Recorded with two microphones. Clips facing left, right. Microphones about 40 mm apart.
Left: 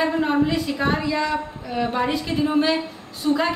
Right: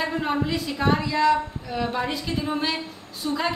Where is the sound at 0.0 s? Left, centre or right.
Centre.